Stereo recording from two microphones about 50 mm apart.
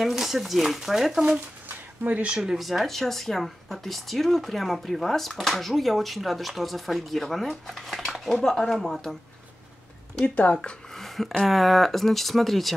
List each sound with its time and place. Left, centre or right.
0.0 s speech: centre
2.3 s speech: centre
2.6 s speech: centre
10.2 s speech: left
11.0 s speech: centre